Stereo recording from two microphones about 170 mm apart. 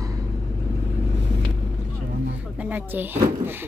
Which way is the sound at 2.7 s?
10° right (ahead or behind).